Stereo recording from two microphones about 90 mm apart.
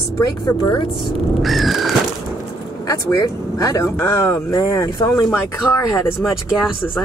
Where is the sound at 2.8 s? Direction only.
45° left (ahead or behind).